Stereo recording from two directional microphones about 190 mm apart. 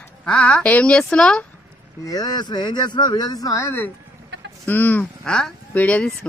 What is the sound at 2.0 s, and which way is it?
Speech, 20° left (ahead or behind).